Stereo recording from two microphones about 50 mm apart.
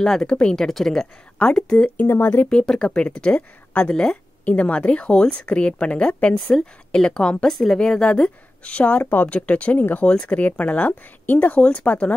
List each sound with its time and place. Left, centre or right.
0.0 s a woman's voice: centre
0.7 s a woman's voice: centre
1.4 s a woman's voice: left
2.0 s speech: left
2.5 s a woman's voice: centre
3.8 s a woman's voice: centre
4.5 s a woman's voice: left
6.5 s a woman's voice: centre
7.5 s a woman's voice: centre
7.8 s a woman's voice: centre; by 10.0 s left
10.0 s a woman's voice: centre
10.3 s a woman's voice: left